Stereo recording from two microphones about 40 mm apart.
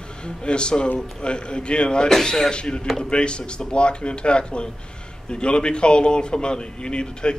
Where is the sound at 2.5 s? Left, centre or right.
Left.